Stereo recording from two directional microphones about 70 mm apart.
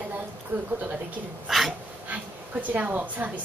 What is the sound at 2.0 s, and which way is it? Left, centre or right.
Speech, right.